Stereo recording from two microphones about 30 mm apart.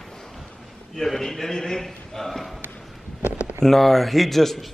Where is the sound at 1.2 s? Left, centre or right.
Centre.